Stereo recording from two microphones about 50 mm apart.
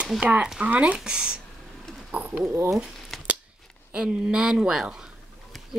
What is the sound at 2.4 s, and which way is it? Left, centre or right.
Speech, right.